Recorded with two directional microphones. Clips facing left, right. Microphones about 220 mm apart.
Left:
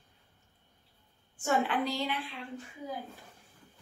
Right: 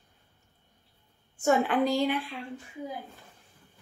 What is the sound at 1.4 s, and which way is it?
Speech, 45° right (ahead or behind).